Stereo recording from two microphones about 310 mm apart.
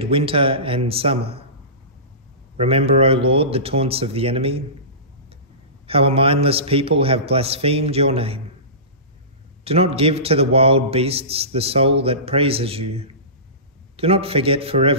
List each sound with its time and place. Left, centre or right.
0.0 s speech: centre
2.6 s a man's voice: centre
5.9 s a man's voice: centre
9.7 s a man's voice: centre